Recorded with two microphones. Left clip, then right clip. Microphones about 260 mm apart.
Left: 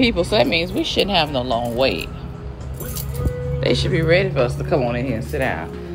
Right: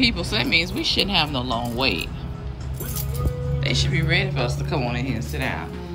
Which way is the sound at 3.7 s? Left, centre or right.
Centre.